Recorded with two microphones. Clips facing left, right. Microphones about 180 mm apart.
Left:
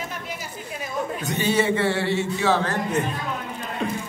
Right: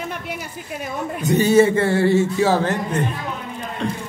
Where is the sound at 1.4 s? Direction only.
45° right (ahead or behind).